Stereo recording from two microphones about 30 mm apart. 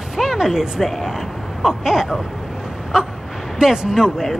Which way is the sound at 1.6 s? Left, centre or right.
Centre.